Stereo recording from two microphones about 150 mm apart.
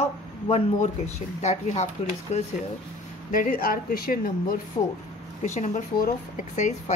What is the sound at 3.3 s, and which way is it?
A woman's voice, 70° left (ahead or behind).